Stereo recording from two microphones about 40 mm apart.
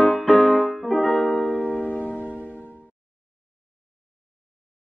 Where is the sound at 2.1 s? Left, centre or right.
Right.